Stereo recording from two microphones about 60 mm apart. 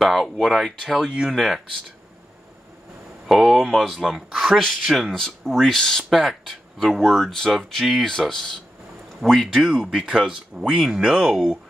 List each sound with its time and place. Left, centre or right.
0.0 s speech: centre
3.3 s speech: centre
10.0 s speech: centre